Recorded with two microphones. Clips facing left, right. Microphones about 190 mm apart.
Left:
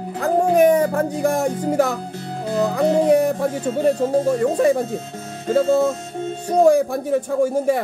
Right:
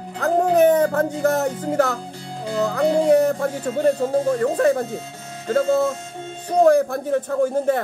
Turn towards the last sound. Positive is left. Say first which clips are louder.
# left 1 dB
turn(degrees=10)  # may be behind; listen again after turning